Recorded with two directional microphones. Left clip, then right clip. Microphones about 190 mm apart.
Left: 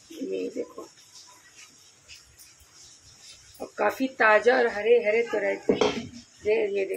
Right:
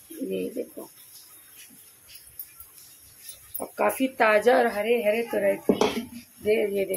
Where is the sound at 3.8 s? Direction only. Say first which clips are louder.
Right 1 dB; 10° right (ahead or behind).